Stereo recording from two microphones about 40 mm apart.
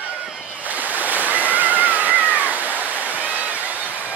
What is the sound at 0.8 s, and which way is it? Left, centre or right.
Waves, right.